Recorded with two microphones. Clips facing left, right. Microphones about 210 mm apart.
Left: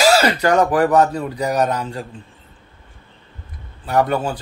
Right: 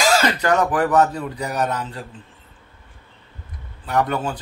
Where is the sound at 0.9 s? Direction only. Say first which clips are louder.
Left 2 dB; 40° left (ahead or behind).